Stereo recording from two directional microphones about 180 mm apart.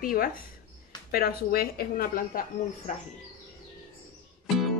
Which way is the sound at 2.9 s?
45° left (ahead or behind).